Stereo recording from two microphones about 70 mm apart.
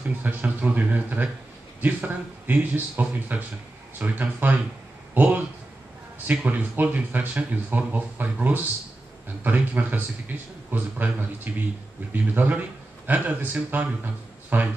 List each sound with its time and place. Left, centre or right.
0.2 s speech: right